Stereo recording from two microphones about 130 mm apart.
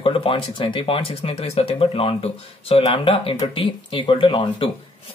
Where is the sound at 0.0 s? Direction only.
40° left (ahead or behind).